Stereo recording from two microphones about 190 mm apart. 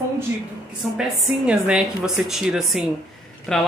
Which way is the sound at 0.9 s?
5° right (ahead or behind).